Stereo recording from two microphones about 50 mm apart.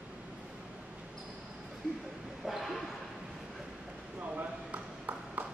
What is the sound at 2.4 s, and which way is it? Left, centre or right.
Dog, centre.